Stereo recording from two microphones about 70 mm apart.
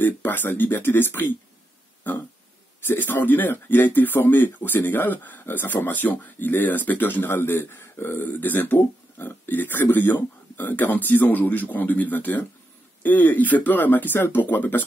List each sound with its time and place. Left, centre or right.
0.0 s speech: left
2.9 s speech: left